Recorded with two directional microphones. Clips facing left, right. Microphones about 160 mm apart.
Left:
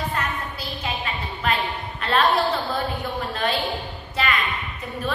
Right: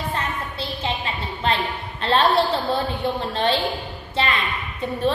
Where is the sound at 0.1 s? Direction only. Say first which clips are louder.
Right 1 dB; 30° right (ahead or behind).